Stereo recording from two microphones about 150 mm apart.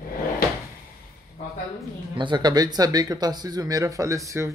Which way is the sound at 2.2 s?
30° right (ahead or behind).